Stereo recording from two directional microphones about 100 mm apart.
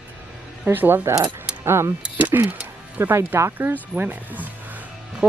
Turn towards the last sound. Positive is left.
turn(degrees=-15)  # may be behind; listen again after turning